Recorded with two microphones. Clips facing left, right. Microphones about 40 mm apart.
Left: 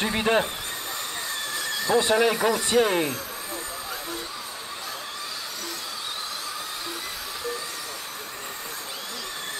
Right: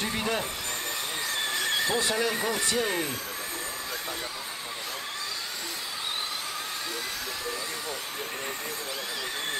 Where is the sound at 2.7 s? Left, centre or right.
Left.